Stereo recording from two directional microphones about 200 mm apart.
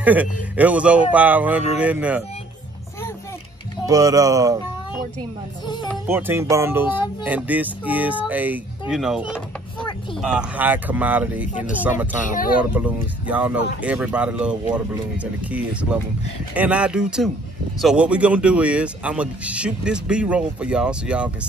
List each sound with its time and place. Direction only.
0.0 s speech: 10° right (ahead or behind)
3.8 s speech: 15° right (ahead or behind)
6.0 s speech: 10° right (ahead or behind)
12.2 s speech: 40° left (ahead or behind)
12.7 s speech: 5° right (ahead or behind)